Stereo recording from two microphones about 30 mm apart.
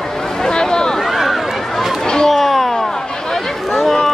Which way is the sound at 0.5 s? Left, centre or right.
Left.